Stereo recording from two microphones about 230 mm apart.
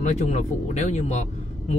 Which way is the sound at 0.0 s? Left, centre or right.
Left.